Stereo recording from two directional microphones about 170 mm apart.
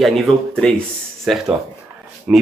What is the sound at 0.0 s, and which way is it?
Speech, centre (ahead or behind).